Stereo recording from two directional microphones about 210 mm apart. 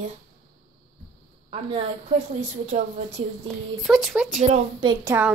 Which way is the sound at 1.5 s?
25° right (ahead or behind).